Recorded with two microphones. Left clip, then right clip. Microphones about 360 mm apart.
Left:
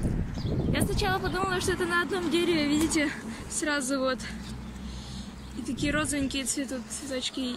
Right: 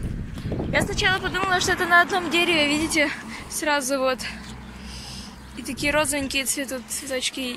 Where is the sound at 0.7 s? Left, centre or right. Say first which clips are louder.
Right 9 dB; centre.